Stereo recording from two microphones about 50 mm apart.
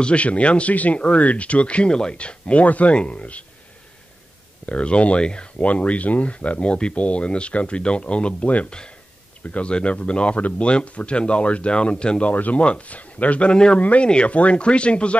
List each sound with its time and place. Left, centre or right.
0.0 s speech: left
4.6 s speech: left
12.3 s speech: left